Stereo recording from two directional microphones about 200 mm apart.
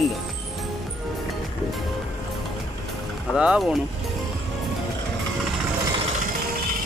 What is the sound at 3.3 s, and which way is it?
Speech, 5° right (ahead or behind).